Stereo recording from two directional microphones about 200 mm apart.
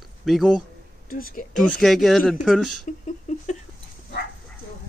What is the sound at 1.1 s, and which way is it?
Speech, 45° left (ahead or behind).